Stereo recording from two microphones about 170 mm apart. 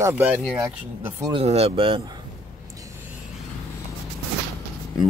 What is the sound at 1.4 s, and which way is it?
Speech, 35° right (ahead or behind).